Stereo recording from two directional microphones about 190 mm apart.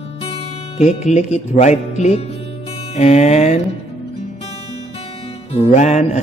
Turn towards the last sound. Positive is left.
turn(degrees=35)  # may be behind; listen again after turning